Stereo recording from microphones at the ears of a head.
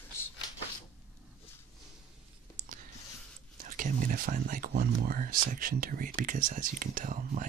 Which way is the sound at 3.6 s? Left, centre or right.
Right.